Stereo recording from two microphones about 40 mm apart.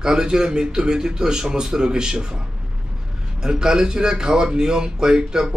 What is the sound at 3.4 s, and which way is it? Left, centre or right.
Speech, centre.